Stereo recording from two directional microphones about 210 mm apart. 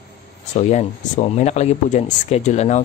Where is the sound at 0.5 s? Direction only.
35° left (ahead or behind).